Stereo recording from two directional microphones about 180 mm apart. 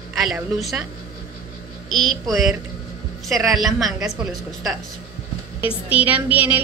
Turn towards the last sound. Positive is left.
turn(degrees=-10)  # may be behind; listen again after turning